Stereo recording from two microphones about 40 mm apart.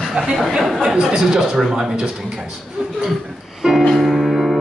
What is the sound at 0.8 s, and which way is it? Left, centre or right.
Speech, centre.